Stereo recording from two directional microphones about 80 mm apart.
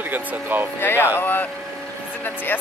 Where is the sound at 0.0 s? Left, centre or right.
Right.